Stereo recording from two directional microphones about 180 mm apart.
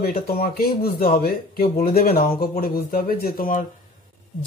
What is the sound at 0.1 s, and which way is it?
Speech, 55° left (ahead or behind).